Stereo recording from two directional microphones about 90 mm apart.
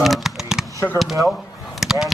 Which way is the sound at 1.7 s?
5° right (ahead or behind).